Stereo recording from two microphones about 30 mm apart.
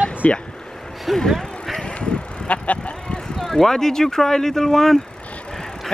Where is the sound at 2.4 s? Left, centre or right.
Left.